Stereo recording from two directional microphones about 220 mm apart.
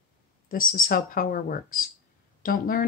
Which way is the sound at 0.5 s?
40° left (ahead or behind).